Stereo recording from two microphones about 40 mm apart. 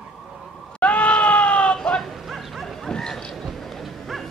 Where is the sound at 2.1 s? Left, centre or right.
Centre.